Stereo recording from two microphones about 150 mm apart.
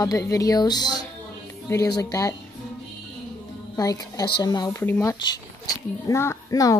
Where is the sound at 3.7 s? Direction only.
25° left (ahead or behind).